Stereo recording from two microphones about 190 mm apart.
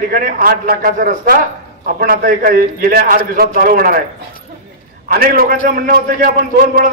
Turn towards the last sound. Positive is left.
turn(degrees=-45)  # may be behind; listen again after turning